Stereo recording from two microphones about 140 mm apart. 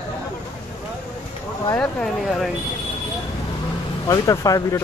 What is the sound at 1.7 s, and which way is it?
Speech, 5° left (ahead or behind).